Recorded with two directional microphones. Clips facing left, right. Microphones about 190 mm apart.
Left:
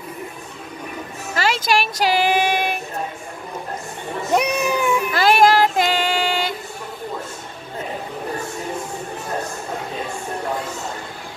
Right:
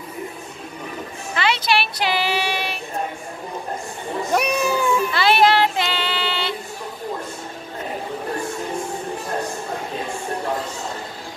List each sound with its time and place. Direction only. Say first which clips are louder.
1.3 s music: left 1 dB; 45° left (ahead or behind)
4.3 s cat: left 1 dB; 20° left (ahead or behind)
5.1 s female singing: left 3 dB; 45° left (ahead or behind)